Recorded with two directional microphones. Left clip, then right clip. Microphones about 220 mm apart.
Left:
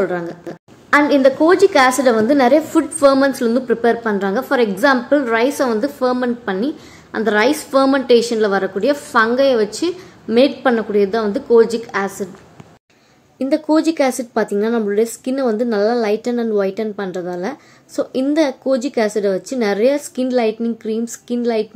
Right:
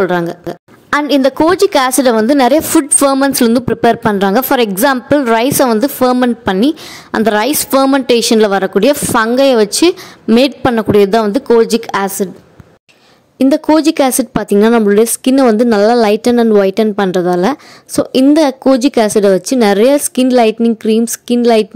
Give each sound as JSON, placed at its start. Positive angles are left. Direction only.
{"t": 0.0, "sound": "a woman's voice", "side_deg": -45}
{"t": 13.4, "sound": "a woman's voice", "side_deg": -40}